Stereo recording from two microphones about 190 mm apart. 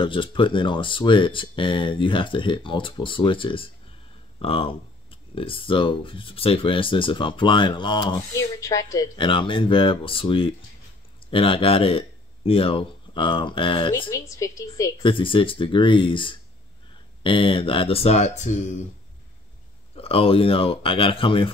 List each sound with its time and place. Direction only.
0.0 s speech: 25° left (ahead or behind)
20.0 s speech: 30° left (ahead or behind)